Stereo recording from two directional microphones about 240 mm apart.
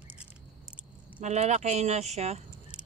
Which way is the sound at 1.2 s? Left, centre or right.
Right.